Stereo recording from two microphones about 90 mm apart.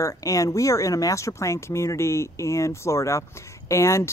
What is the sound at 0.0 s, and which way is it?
Speech, 40° left (ahead or behind).